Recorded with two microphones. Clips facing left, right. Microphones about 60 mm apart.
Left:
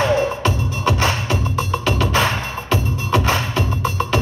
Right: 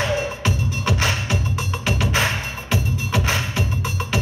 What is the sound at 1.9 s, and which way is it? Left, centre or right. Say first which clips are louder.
Music: left 3 dB; centre.